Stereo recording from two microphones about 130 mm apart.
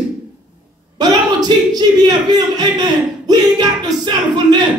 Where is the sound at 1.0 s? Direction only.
35° right (ahead or behind).